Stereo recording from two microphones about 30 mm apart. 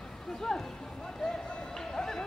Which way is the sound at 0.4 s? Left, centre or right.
Centre.